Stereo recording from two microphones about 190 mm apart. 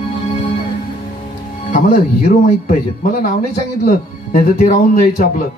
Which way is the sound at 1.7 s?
40° left (ahead or behind).